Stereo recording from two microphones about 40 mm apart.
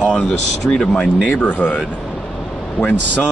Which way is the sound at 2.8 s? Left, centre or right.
Left.